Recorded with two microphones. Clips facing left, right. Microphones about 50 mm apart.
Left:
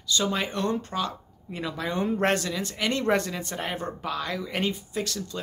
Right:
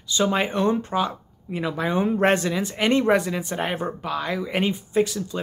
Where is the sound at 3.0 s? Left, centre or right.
Centre.